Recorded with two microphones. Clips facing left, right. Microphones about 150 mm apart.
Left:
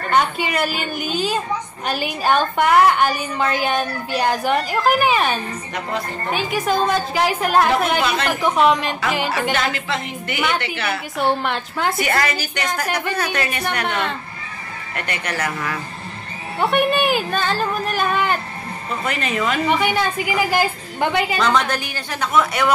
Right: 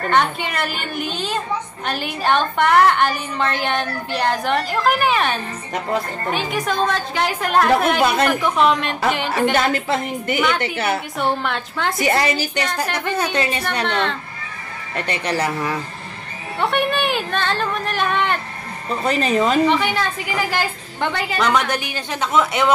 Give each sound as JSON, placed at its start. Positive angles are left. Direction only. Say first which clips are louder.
{"t": 0.1, "sound": "a woman's voice", "louder": "left 2 dB", "side_deg": 5}
{"t": 9.3, "sound": "a woman's voice", "louder": "right 3 dB", "side_deg": -45}
{"t": 11.1, "sound": "a woman's voice", "louder": "left 1 dB", "side_deg": 0}
{"t": 12.0, "sound": "a woman's voice", "louder": "right 2 dB", "side_deg": -25}
{"t": 12.8, "sound": "a woman's voice", "louder": "left 1 dB", "side_deg": 10}
{"t": 13.1, "sound": "a woman's voice", "louder": "right 2 dB", "side_deg": -20}
{"t": 13.8, "sound": "a woman's voice", "louder": "right 4 dB", "side_deg": 10}
{"t": 15.0, "sound": "a woman's voice", "louder": "right 4 dB", "side_deg": -30}
{"t": 16.5, "sound": "a woman's voice", "louder": "left 2 dB", "side_deg": 5}
{"t": 19.0, "sound": "a woman's voice", "louder": "right 5 dB", "side_deg": -35}
{"t": 19.7, "sound": "a woman's voice", "louder": "left 1 dB", "side_deg": 10}
{"t": 21.4, "sound": "a woman's voice", "louder": "even", "side_deg": -15}